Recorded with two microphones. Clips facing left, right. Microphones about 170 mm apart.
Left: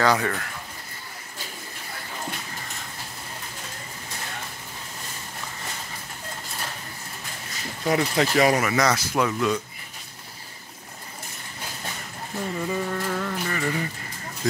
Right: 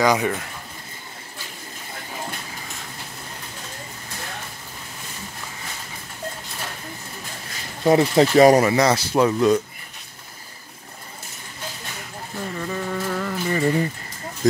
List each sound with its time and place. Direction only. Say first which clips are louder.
0.0 s speech: right 3 dB; 15° right (ahead or behind)
7.8 s speech: right 7 dB; 30° right (ahead or behind)
12.5 s music: right 1 dB; 5° left (ahead or behind)
13.5 s speech: right 10 dB; 30° right (ahead or behind)
14.4 s speech: right 7 dB; 40° right (ahead or behind)